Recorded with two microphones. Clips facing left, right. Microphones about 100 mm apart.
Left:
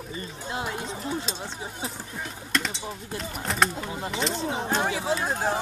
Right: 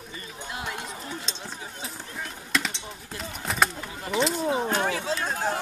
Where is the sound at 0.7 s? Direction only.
25° left (ahead or behind).